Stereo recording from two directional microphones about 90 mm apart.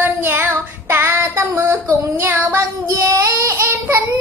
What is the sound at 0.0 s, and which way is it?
Child singing, 25° right (ahead or behind).